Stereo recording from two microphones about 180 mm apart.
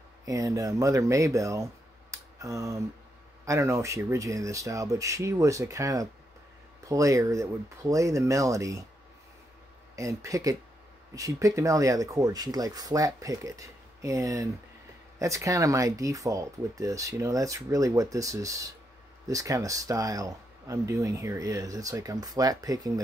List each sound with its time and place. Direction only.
0.2 s speech: 20° right (ahead or behind)
9.9 s a man's voice: 20° right (ahead or behind)